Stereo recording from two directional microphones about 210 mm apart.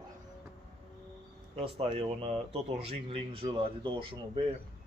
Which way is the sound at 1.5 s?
25° right (ahead or behind).